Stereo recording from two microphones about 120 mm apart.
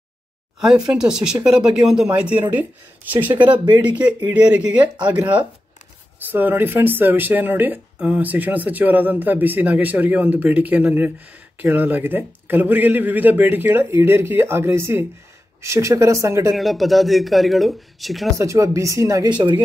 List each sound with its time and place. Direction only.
0.6 s speech: 5° right (ahead or behind)
4.3 s speech: 10° right (ahead or behind); by 16.5 s 25° right (ahead or behind)
16.5 s speech: centre (ahead or behind)
18.4 s speech: 25° right (ahead or behind)